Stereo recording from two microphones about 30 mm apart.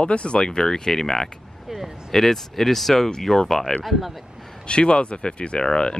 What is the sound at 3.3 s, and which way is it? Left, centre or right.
Speech, centre.